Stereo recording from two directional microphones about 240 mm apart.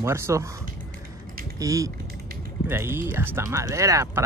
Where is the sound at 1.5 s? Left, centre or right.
Centre.